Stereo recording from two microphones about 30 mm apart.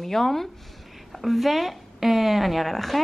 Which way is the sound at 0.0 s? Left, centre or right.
Centre.